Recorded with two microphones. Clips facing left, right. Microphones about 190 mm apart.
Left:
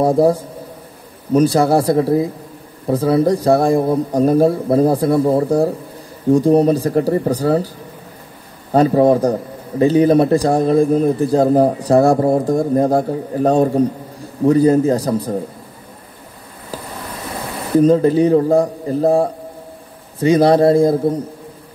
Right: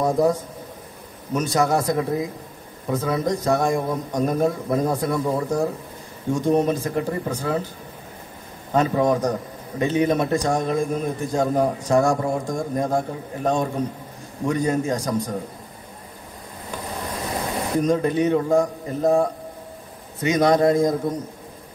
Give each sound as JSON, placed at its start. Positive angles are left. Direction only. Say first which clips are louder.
{"t": 0.0, "sound": "a man's voice", "louder": "left 6 dB", "side_deg": 30}
{"t": 8.7, "sound": "a man's voice", "louder": "left 7 dB", "side_deg": 35}
{"t": 17.7, "sound": "a man's voice", "louder": "left 9 dB", "side_deg": 30}